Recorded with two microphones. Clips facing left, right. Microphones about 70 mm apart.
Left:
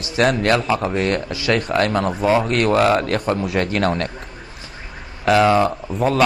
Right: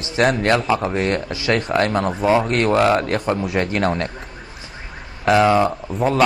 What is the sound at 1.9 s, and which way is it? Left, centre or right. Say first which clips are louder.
Speech: even; centre.